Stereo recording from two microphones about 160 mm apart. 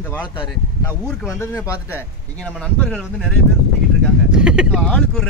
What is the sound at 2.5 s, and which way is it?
Speech, 5° left (ahead or behind).